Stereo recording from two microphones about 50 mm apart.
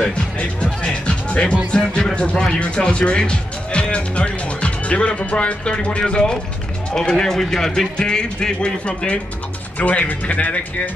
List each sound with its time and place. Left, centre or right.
0.0 s speech: left
9.8 s speech: left